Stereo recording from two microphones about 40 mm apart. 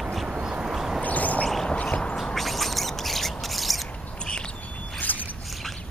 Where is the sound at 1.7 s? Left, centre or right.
Left.